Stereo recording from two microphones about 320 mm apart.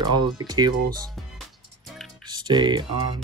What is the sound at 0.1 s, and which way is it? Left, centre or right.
Speech, centre.